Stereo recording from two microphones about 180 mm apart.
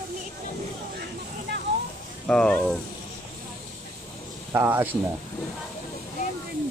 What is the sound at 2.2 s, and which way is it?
Speech, 5° left (ahead or behind).